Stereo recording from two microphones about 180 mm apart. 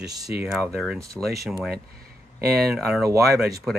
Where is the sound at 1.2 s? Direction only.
5° right (ahead or behind).